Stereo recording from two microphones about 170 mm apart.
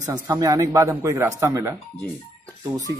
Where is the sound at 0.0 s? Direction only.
20° right (ahead or behind).